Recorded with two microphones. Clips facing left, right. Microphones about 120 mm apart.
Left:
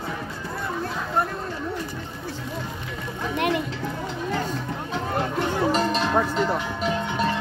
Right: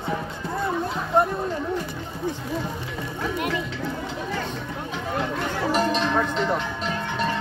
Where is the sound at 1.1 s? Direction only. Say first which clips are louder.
Right 5 dB; 20° right (ahead or behind).